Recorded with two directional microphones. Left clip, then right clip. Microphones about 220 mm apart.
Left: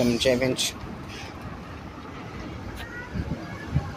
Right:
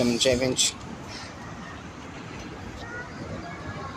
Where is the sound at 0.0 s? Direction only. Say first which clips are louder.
Even; centre (ahead or behind).